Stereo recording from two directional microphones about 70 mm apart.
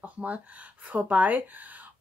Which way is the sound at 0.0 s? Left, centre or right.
Centre.